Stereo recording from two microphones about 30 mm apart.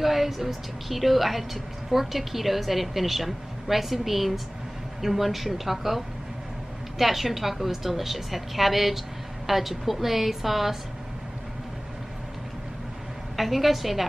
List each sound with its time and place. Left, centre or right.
0.0 s a woman's voice: centre
13.4 s a woman's voice: centre